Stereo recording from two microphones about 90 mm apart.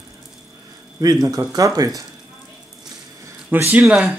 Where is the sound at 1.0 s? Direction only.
45° right (ahead or behind).